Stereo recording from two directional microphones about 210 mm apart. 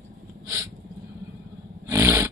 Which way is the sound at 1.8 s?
15° right (ahead or behind).